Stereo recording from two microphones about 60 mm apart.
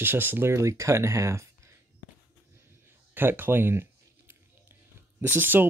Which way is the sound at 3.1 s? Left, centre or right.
Right.